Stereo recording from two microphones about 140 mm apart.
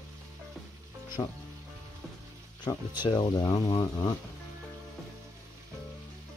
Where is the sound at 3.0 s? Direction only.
30° left (ahead or behind).